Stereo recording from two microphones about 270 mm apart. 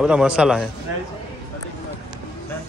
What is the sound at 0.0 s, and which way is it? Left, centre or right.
Speech, centre.